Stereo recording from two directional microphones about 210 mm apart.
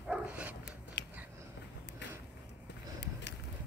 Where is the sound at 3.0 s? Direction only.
55° left (ahead or behind).